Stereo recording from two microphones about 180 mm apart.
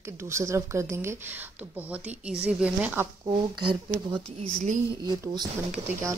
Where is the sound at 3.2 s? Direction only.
25° right (ahead or behind).